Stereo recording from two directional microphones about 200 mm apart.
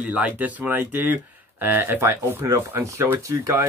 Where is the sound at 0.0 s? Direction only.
5° right (ahead or behind).